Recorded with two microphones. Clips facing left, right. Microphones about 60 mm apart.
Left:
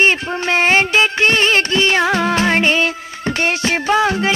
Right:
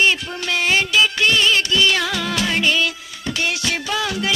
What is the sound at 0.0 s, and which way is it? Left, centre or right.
Music, left.